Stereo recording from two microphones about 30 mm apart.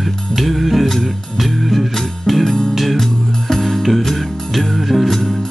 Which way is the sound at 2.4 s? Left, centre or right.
Left.